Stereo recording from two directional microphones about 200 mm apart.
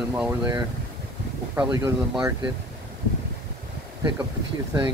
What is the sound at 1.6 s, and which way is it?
Speech, 10° right (ahead or behind).